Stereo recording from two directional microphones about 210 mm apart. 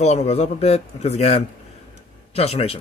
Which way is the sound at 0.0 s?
30° left (ahead or behind).